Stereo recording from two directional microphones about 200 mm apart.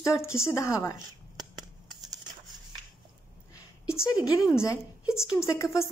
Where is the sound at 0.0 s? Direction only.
15° left (ahead or behind).